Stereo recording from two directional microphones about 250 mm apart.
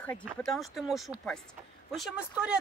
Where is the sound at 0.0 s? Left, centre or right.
Centre.